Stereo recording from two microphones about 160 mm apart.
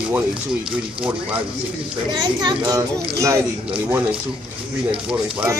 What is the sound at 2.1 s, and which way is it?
Speech, 25° right (ahead or behind).